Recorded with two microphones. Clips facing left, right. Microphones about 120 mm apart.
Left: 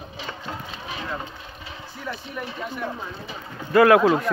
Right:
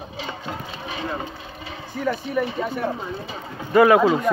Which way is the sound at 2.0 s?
55° right (ahead or behind).